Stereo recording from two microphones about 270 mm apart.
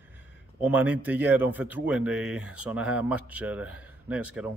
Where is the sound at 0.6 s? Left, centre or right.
Centre.